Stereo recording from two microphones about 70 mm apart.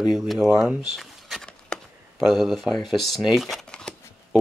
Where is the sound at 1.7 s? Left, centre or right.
Centre.